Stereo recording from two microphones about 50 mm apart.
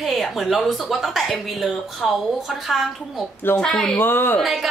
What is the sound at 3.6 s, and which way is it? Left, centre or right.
Speech, centre.